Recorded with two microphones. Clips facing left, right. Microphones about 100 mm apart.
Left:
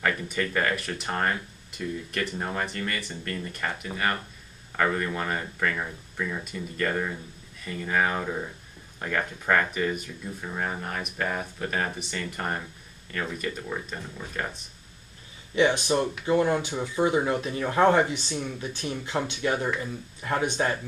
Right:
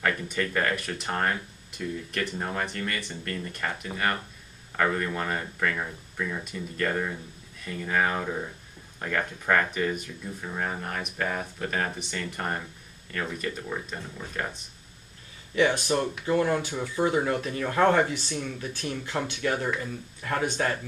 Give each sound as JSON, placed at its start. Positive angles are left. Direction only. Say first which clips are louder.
{"t": 0.0, "sound": "speech", "louder": "even", "side_deg": 0}
{"t": 15.5, "sound": "speech", "louder": "left 1 dB", "side_deg": 20}